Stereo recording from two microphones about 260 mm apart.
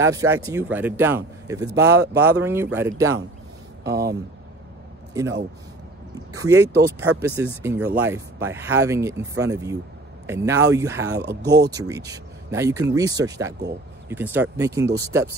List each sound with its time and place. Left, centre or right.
0.0 s speech: centre
3.8 s speech: right
6.1 s speech: centre
11.1 s speech: right
11.7 s speech: centre